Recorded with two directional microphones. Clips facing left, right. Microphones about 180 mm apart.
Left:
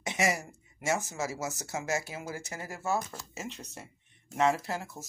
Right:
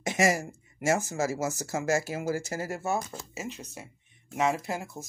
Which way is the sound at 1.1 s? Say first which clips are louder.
Right 6 dB; 50° right (ahead or behind).